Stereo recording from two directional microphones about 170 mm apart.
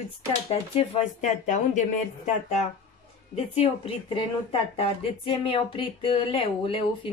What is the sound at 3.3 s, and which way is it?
Speech, 35° left (ahead or behind).